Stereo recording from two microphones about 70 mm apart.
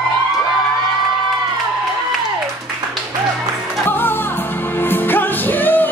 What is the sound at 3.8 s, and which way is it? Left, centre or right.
Music, left.